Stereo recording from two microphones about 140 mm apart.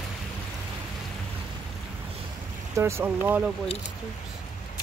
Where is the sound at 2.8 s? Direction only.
20° right (ahead or behind).